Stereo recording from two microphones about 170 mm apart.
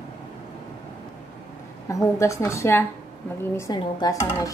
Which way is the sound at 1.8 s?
20° left (ahead or behind).